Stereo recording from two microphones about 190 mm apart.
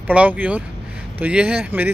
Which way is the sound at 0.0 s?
5° right (ahead or behind).